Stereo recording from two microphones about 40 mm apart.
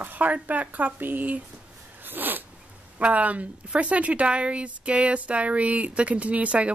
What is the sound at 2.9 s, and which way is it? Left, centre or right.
Speech, right.